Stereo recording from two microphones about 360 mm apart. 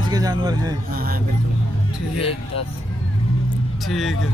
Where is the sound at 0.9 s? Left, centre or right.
Right.